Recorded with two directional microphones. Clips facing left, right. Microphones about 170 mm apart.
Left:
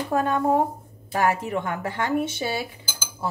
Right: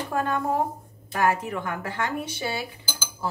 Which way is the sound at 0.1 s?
25° left (ahead or behind).